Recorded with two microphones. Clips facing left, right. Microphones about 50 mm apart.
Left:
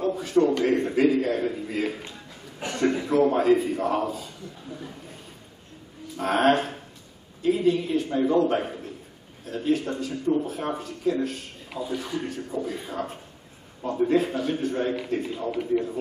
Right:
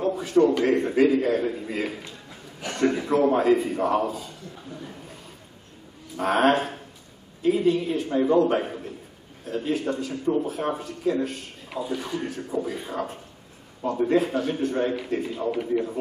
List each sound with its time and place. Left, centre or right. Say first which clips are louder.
0.0 s a sound: right 2 dB; centre
0.9 s a man's voice: right 2 dB; centre
6.2 s a man's voice: right 1 dB; centre